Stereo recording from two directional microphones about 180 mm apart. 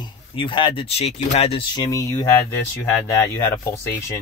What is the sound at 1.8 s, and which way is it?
Speech, 20° left (ahead or behind).